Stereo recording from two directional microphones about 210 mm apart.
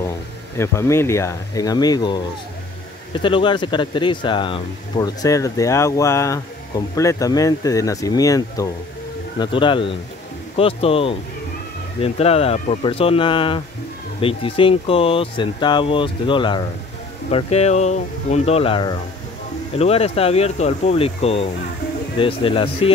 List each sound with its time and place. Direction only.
0.6 s speech: 15° left (ahead or behind)